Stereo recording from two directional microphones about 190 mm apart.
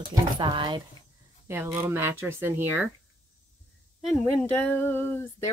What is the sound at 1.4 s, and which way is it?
Speech, 15° right (ahead or behind).